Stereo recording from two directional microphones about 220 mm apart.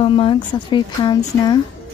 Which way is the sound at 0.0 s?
25° left (ahead or behind).